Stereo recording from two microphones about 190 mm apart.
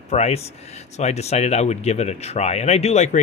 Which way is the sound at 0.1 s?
35° left (ahead or behind).